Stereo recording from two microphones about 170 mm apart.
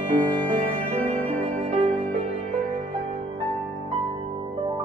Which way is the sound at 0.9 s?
40° right (ahead or behind).